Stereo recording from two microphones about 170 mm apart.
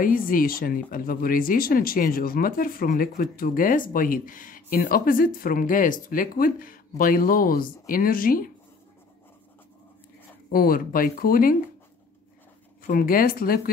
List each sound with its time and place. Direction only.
0.0 s speech: 55° left (ahead or behind)
10.5 s speech: 60° left (ahead or behind)
12.8 s speech: 55° left (ahead or behind)